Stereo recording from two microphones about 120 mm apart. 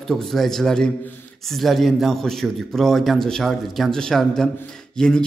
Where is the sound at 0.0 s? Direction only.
5° left (ahead or behind).